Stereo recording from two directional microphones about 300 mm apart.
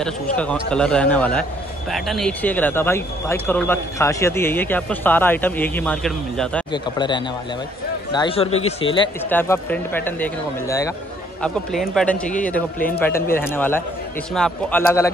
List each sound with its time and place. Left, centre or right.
0.0 s speech: centre
6.7 s speech: centre
9.3 s speech: centre